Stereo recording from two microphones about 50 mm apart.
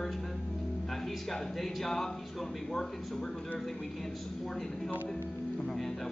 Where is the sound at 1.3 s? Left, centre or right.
Centre.